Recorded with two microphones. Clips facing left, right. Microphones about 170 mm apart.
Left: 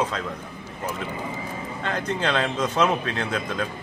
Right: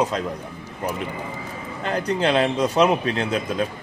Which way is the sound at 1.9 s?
35° right (ahead or behind).